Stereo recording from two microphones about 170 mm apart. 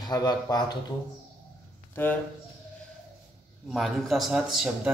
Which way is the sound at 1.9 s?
10° left (ahead or behind).